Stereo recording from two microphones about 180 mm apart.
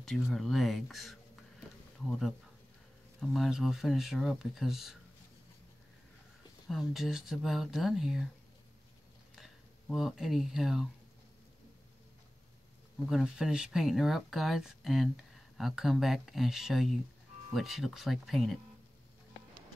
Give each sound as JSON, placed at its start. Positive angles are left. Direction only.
{"t": 0.0, "sound": "speech", "side_deg": 0}
{"t": 6.7, "sound": "speech", "side_deg": 0}
{"t": 9.3, "sound": "speech", "side_deg": 0}
{"t": 13.1, "sound": "speech", "side_deg": -5}